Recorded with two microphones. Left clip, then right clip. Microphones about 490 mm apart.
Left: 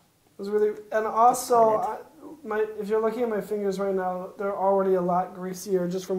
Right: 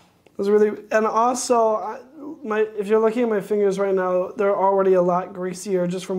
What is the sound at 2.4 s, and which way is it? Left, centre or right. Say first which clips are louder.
A man's voice: right 5 dB; right.